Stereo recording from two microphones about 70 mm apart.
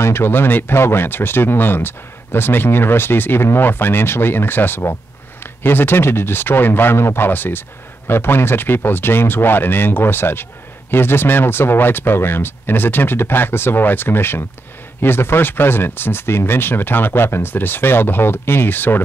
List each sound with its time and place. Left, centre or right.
0.0 s speech: left